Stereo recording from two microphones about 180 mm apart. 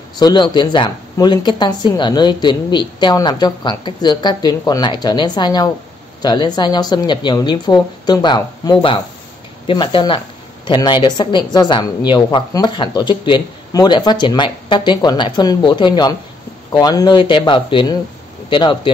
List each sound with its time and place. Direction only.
0.2 s a woman's voice: 25° left (ahead or behind)